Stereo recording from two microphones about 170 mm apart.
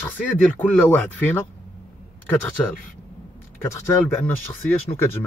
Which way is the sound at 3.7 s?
15° left (ahead or behind).